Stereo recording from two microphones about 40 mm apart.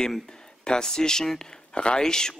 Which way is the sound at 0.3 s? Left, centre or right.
Centre.